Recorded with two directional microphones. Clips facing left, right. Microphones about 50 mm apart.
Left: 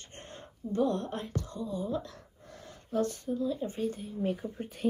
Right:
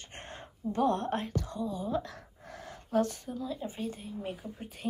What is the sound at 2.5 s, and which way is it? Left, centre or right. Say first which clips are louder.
Speech: right 2 dB; right.